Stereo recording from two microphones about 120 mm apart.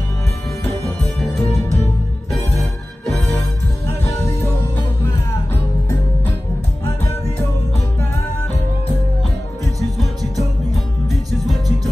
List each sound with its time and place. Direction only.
0.8 s music: 5° left (ahead or behind)
2.6 s music: centre (ahead or behind)
3.3 s music: 20° left (ahead or behind)
9.8 s music: centre (ahead or behind)